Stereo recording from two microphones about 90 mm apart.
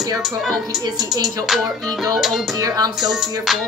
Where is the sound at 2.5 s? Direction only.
45° right (ahead or behind).